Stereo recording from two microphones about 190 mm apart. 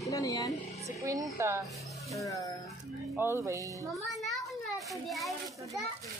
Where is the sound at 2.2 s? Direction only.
15° left (ahead or behind).